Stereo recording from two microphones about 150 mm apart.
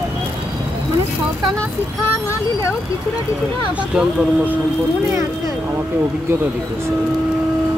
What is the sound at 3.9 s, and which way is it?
Speech, 10° right (ahead or behind).